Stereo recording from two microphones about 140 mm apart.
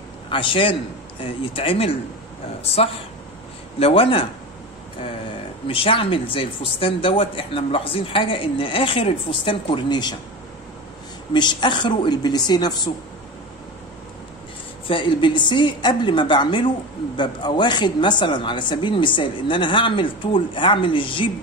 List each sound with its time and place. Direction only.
0.3 s speech: 40° left (ahead or behind)
5.7 s speech: 40° left (ahead or behind)
11.3 s speech: 35° left (ahead or behind)
14.9 s speech: 35° left (ahead or behind)